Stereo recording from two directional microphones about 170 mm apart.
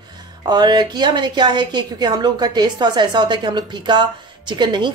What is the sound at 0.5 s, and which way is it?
A woman's voice, 25° right (ahead or behind).